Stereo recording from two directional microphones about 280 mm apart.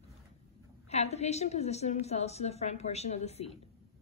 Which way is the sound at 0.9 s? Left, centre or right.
Left.